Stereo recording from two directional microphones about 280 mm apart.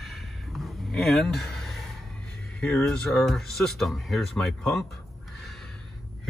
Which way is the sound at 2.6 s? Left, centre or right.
Centre.